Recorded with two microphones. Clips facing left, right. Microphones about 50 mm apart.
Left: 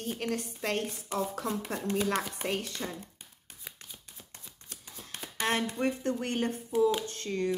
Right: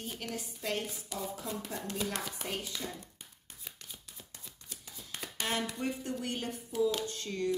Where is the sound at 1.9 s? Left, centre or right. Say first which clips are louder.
Left 8 dB; left.